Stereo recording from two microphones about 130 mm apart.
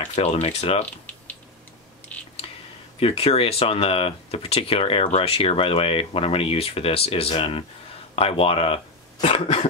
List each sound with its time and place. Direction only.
0.0 s speech: 50° left (ahead or behind)
0.8 s typing: 10° left (ahead or behind)
2.4 s a sound: 45° left (ahead or behind)
3.0 s speech: 45° left (ahead or behind)